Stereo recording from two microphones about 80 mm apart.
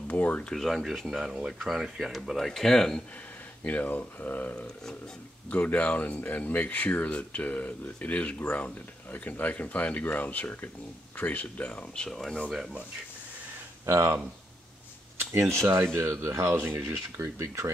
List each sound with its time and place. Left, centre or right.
0.1 s speech: centre
0.5 s speech: centre
3.6 s speech: centre
13.8 s speech: right